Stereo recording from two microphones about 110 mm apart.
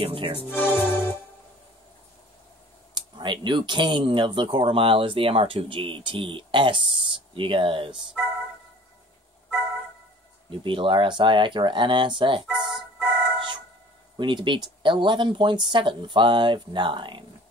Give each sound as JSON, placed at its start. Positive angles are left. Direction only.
{"t": 0.0, "sound": "music", "side_deg": -55}
{"t": 0.5, "sound": "speech", "side_deg": 20}
{"t": 2.9, "sound": "speech", "side_deg": -45}
{"t": 10.6, "sound": "speech", "side_deg": -50}
{"t": 12.4, "sound": "music", "side_deg": -5}
{"t": 14.1, "sound": "speech", "side_deg": -45}